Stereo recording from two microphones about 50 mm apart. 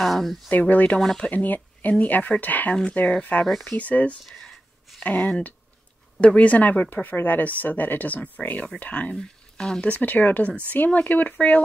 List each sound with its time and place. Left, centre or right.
0.0 s speech: centre
0.5 s speech: left
1.0 s speech: centre
1.3 s speech: left
2.7 s speech: centre
4.3 s a sound: centre
5.0 s speech: left
9.1 s speech: centre
9.8 s speech: left